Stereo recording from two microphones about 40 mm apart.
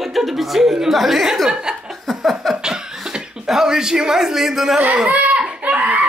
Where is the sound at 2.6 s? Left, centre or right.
Centre.